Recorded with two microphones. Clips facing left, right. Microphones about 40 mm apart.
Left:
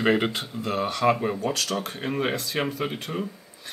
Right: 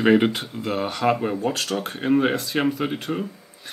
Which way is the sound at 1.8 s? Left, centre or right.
Centre.